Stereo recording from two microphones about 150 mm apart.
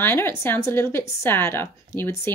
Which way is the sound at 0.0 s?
15° left (ahead or behind).